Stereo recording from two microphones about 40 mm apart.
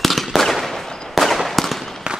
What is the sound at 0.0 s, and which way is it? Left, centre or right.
Fireworks, centre.